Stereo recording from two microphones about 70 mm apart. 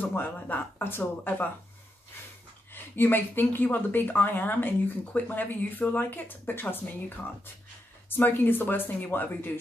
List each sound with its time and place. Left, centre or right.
0.0 s speech: left
2.7 s speech: left
8.1 s speech: left